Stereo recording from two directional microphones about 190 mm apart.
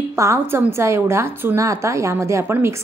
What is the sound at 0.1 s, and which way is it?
A woman's voice, 15° right (ahead or behind).